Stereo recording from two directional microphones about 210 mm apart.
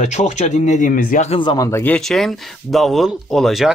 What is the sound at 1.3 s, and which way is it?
Speech, 20° left (ahead or behind).